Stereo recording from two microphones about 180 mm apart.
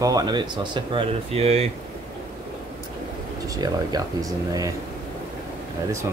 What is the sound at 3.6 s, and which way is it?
Speech, 20° right (ahead or behind).